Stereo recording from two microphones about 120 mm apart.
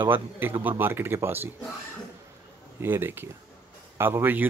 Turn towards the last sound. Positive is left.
turn(degrees=-15)  # may be behind; listen again after turning